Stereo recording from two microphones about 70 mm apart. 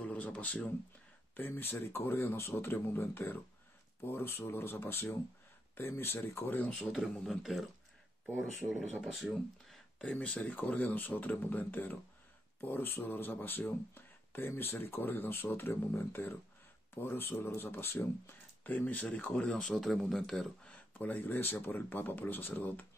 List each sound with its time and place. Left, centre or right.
0.0 s speech: centre
6.7 s a man's voice: centre
7.2 s speech: centre
10.1 s speech: left
19.3 s speech: centre
20.7 s speech: left